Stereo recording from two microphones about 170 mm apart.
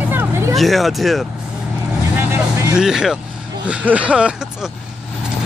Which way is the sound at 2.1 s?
15° right (ahead or behind).